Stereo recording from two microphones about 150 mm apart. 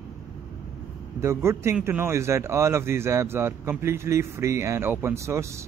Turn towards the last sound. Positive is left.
turn(degrees=-20)  # may be behind; listen again after turning